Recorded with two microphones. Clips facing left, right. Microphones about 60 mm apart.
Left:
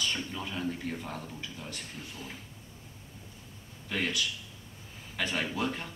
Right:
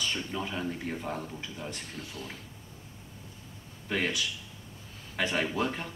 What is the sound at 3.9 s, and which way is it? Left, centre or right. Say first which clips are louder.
Speech: right 2 dB; centre.